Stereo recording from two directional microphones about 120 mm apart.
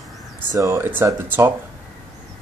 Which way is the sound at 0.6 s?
25° right (ahead or behind).